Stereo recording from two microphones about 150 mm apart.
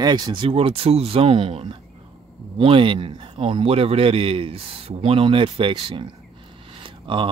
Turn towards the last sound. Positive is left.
turn(degrees=-35)  # may be behind; listen again after turning